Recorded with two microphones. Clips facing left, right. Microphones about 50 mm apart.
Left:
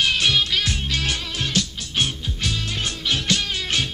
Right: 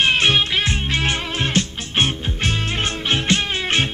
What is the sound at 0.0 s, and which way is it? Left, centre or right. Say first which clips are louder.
Music: right 4 dB; right.